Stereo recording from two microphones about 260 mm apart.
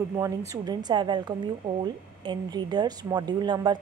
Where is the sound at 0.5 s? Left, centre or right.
Centre.